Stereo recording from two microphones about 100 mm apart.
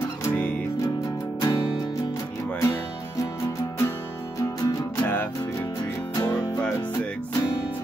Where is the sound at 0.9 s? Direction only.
35° left (ahead or behind).